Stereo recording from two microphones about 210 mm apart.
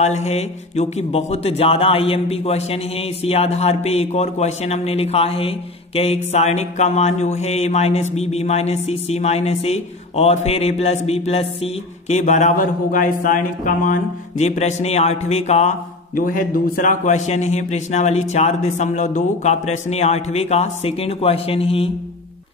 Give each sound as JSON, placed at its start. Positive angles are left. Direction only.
{"t": 0.0, "sound": "speech", "side_deg": 30}
{"t": 16.2, "sound": "speech", "side_deg": 40}